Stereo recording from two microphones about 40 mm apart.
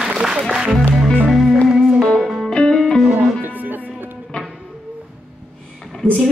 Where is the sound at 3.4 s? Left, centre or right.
Right.